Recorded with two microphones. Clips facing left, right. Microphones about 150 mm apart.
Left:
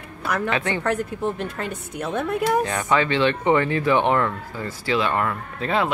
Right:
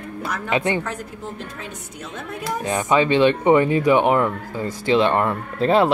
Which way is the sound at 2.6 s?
15° right (ahead or behind).